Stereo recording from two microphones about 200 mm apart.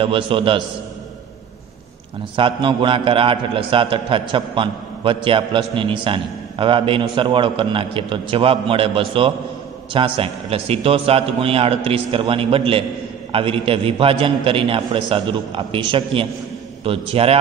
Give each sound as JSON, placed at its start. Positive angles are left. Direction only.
{"t": 0.0, "sound": "a man's voice", "side_deg": -25}
{"t": 2.3, "sound": "a man's voice", "side_deg": -25}